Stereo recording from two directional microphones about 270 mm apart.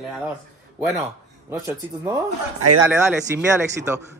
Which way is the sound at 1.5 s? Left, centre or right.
Centre.